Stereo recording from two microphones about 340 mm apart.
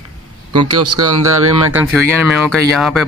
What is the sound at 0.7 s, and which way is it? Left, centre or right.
Speech, right.